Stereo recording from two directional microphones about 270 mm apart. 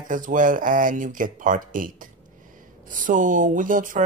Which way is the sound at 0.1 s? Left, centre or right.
Right.